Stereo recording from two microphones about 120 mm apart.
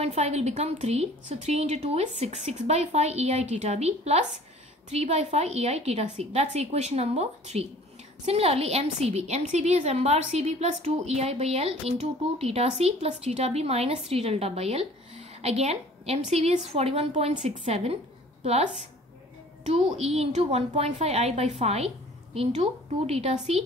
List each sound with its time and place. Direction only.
0.0 s a woman's voice: 65° right (ahead or behind)